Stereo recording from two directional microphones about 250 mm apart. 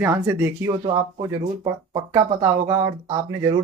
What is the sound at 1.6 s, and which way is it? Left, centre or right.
Speech, right.